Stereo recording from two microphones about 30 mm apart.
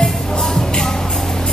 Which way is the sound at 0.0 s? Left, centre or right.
Centre.